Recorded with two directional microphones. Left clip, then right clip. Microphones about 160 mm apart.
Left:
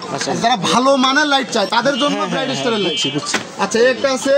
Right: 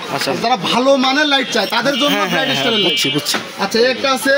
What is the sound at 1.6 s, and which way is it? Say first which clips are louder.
Speech: even; 30° right (ahead or behind).